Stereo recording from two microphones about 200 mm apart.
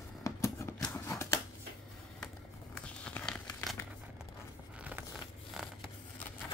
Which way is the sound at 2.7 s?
5° left (ahead or behind).